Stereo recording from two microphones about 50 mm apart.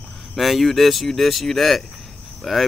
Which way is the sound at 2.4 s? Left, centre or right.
Centre.